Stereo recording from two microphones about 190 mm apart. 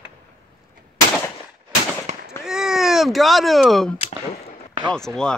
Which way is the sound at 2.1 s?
40° right (ahead or behind).